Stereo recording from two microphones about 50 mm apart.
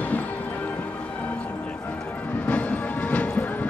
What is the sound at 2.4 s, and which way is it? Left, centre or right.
Music, left.